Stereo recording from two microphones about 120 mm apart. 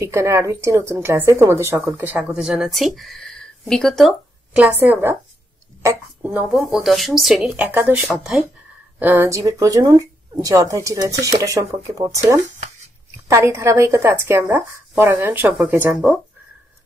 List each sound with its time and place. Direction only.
0.0 s speech: 25° right (ahead or behind); by 4.1 s centre (ahead or behind)
4.6 s speech: 15° right (ahead or behind)
6.5 s speech: centre (ahead or behind)
9.0 s speech: 20° right (ahead or behind)
13.3 s speech: 25° right (ahead or behind)